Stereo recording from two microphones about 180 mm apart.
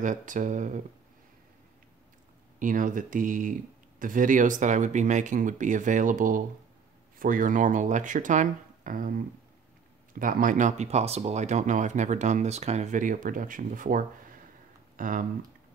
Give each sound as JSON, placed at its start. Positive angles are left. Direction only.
{"t": 0.0, "sound": "speech", "side_deg": -45}
{"t": 2.6, "sound": "speech", "side_deg": -45}
{"t": 10.1, "sound": "speech", "side_deg": -50}